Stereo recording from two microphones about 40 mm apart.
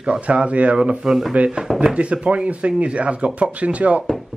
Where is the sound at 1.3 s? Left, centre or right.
Right.